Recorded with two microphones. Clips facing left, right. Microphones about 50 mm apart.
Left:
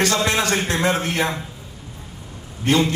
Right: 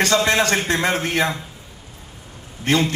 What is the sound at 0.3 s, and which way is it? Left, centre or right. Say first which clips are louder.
A man's voice: right 2 dB; right.